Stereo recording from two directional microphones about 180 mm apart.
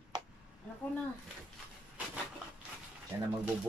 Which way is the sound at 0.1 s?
20° right (ahead or behind).